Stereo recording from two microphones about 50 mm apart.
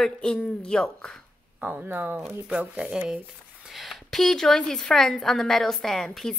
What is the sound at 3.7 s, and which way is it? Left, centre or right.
A woman's voice, centre.